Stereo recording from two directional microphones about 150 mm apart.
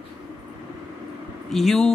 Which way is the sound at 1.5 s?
Centre (ahead or behind).